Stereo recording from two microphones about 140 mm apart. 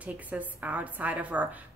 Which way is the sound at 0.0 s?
10° right (ahead or behind).